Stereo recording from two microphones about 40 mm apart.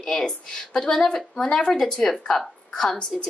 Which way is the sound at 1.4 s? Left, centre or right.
Left.